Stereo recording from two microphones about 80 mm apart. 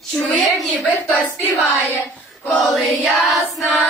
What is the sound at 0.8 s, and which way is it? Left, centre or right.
Choir, centre.